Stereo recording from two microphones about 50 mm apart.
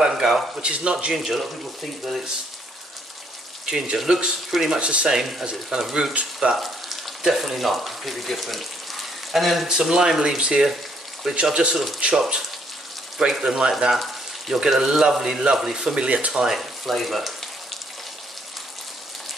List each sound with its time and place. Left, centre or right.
0.0 s a sound: centre
0.6 s speech: centre
1.1 s speech: centre
3.6 s speech: centre
4.7 s speech: centre
6.5 s speech: centre
11.6 s speech: centre
16.0 s speech: right
16.4 s speech: centre